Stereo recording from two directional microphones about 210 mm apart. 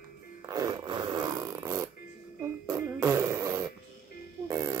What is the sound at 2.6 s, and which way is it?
Music, 15° right (ahead or behind).